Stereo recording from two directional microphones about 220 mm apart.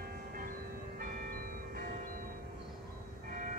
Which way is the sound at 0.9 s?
40° right (ahead or behind).